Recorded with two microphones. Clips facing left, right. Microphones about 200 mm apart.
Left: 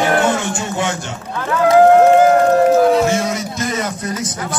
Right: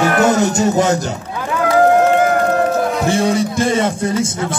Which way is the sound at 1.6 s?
35° left (ahead or behind).